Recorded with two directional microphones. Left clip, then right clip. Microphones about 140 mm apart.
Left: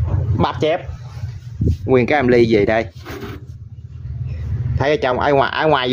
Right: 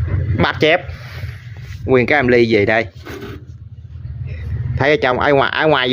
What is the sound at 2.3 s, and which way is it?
Speech, 35° left (ahead or behind).